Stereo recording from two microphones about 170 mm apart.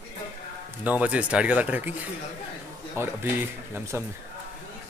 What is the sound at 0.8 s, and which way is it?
Speech, 10° right (ahead or behind).